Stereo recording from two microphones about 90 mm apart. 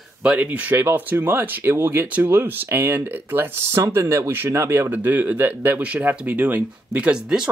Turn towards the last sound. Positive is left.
turn(degrees=-10)  # may be behind; listen again after turning